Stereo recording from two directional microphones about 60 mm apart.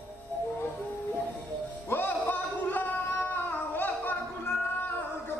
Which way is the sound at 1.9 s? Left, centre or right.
Left.